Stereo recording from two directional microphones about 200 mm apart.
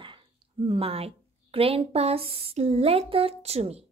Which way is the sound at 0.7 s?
30° right (ahead or behind).